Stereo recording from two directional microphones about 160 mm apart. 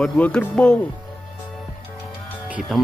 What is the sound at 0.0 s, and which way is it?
Speech, 5° left (ahead or behind).